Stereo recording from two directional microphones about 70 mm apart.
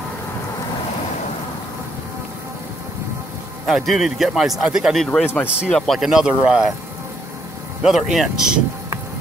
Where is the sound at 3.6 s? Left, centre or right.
Centre.